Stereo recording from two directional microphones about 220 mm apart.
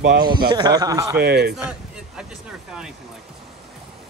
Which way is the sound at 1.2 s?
45° right (ahead or behind).